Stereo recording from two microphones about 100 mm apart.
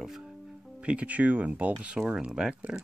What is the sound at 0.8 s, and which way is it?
Speech, 10° right (ahead or behind).